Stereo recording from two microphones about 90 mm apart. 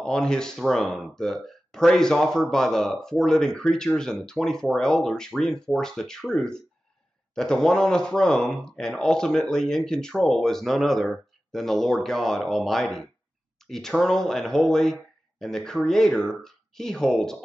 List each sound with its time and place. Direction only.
0.0 s speech: 10° left (ahead or behind)